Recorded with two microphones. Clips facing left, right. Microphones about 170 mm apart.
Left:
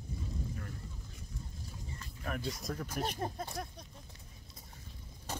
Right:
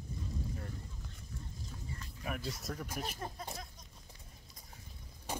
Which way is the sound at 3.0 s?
50° left (ahead or behind).